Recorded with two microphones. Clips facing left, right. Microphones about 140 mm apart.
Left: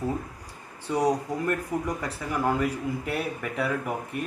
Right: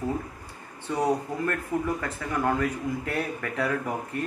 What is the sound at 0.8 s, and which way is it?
Speech, 10° left (ahead or behind).